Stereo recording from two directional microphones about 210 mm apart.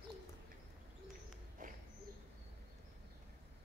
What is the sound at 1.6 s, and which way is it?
Owl, 40° right (ahead or behind).